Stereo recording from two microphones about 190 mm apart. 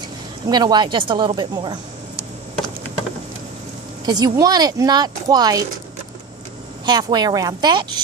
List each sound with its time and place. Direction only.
0.5 s speech: 20° right (ahead or behind)
4.0 s speech: 20° right (ahead or behind)
6.9 s speech: 20° right (ahead or behind)